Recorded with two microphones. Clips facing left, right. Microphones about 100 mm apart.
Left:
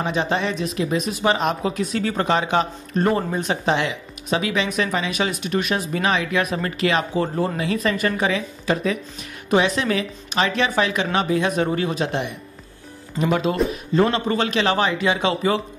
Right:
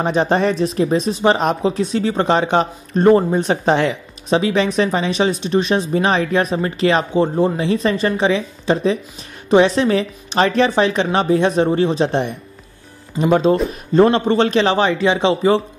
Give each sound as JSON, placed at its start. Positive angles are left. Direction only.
{"t": 0.0, "sound": "speech", "side_deg": -40}